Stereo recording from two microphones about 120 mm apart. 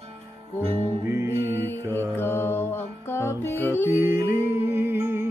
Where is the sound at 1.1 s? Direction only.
20° right (ahead or behind).